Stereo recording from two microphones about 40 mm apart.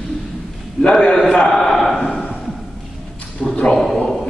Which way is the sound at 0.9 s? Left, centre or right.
Centre.